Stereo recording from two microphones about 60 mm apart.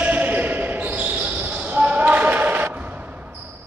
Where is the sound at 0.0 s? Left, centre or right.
Right.